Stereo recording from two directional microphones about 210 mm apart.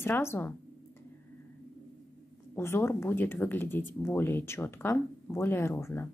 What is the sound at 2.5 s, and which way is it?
Speech, 10° left (ahead or behind).